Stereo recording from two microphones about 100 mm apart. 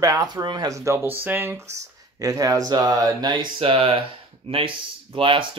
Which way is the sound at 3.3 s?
55° right (ahead or behind).